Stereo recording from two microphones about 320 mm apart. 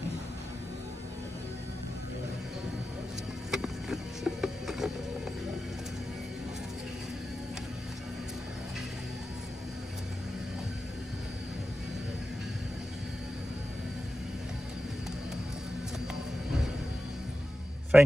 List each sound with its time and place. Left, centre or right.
3.5 s music: centre
17.9 s a man's voice: centre